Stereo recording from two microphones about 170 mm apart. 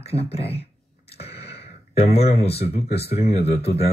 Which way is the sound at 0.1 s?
35° left (ahead or behind).